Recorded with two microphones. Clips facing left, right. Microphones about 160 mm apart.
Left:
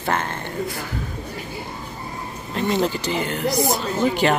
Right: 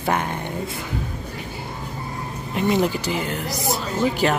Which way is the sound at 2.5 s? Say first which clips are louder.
Right 1 dB; 10° right (ahead or behind).